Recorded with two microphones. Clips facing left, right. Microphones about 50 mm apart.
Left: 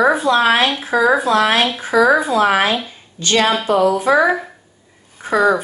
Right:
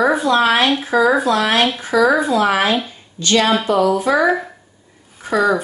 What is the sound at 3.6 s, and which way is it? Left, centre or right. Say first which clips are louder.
Speech: left 1 dB; centre.